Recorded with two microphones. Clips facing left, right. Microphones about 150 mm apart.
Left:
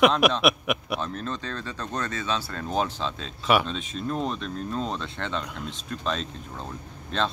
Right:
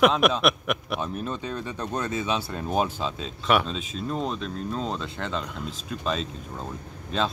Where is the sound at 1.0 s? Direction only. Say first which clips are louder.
Right 1 dB; 10° right (ahead or behind).